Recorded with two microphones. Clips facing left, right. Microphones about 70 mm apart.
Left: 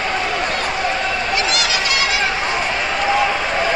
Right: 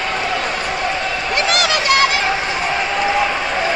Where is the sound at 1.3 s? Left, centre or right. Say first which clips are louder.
Right 6 dB; right.